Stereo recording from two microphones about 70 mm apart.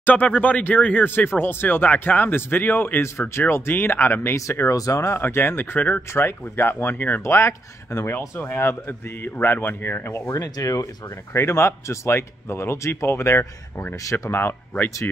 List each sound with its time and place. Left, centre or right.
0.0 s speech: left
5.2 s speech: left
6.2 s speech: left
7.3 s speech: left
10.1 s speech: left
11.3 s speech: left
14.1 s speech: left